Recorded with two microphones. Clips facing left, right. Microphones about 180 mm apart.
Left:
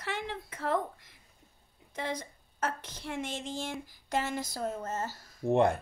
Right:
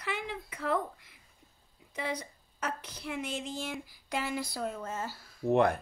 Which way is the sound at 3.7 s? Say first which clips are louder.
Left 3 dB; 45° left (ahead or behind).